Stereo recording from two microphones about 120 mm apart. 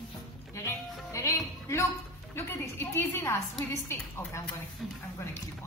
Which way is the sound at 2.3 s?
20° left (ahead or behind).